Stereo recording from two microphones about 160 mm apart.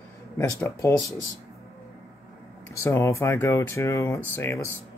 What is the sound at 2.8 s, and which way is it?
Speech, 20° left (ahead or behind).